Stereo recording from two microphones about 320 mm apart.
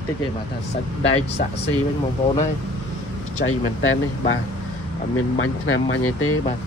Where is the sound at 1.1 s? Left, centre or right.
Centre.